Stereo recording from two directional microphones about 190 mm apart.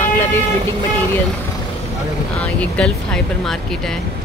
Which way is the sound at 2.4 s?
5° left (ahead or behind).